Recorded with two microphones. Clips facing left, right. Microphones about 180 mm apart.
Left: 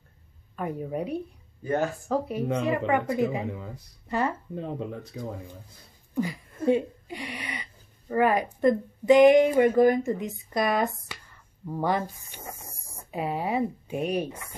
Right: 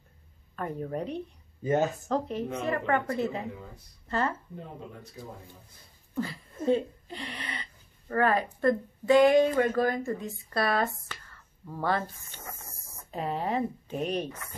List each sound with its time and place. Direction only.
0.6 s speech: 10° left (ahead or behind)
1.6 s speech: 20° right (ahead or behind)
2.0 s speech: 5° left (ahead or behind)
6.1 s speech: 15° left (ahead or behind)